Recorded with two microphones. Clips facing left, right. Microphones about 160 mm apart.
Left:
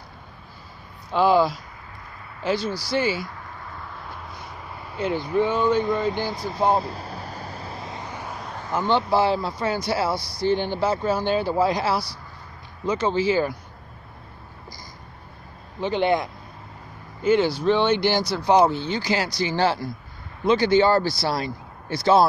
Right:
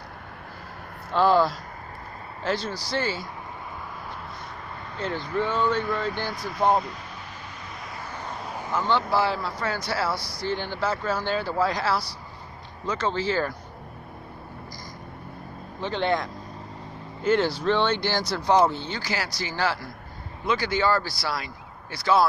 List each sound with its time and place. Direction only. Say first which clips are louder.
1.1 s speech: left 2 dB; 5° left (ahead or behind)
4.9 s speech: left 5 dB; 10° left (ahead or behind)
6.7 s vehicle: left 1 dB; 30° left (ahead or behind); by 8.4 s 15° left (ahead or behind)
8.4 s a sound: right 1 dB; 5° right (ahead or behind)
8.7 s speech: left 3 dB; 20° left (ahead or behind)
15.8 s speech: left 4 dB; 10° left (ahead or behind)
18.2 s speech: left 3 dB; 5° left (ahead or behind)
18.5 s speech: left 3 dB; 15° left (ahead or behind)